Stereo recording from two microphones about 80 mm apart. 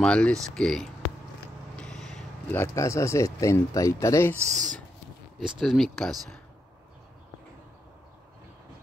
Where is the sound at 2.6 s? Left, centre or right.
Left.